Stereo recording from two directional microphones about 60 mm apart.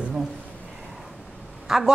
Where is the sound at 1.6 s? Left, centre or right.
Centre.